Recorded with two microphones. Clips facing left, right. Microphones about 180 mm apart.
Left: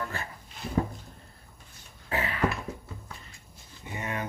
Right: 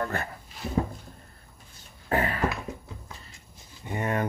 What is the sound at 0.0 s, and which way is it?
Speech, 55° right (ahead or behind).